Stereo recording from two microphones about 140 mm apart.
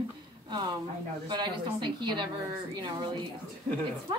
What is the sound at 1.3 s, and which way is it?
A woman's voice, 30° right (ahead or behind).